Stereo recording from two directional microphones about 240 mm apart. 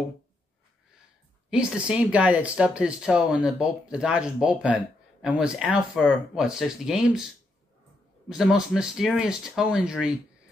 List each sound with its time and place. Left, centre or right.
1.5 s speech: centre
8.3 s speech: centre